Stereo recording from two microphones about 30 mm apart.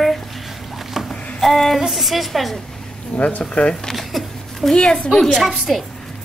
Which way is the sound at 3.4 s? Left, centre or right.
Left.